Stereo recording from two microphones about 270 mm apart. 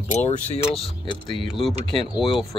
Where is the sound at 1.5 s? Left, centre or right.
Centre.